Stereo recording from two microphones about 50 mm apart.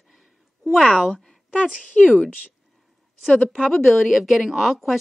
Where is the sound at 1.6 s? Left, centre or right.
Left.